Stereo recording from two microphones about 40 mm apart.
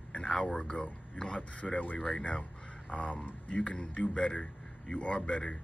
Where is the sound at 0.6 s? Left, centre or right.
Left.